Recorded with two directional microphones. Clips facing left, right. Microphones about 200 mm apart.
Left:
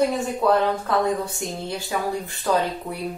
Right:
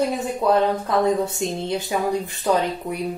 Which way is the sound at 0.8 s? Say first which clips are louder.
Right 3 dB; 20° right (ahead or behind).